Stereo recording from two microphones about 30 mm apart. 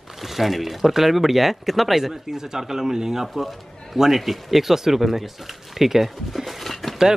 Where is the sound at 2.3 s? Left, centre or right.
Centre.